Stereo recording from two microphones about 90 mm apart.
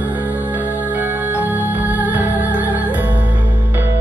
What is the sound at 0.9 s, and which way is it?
Music, 20° right (ahead or behind).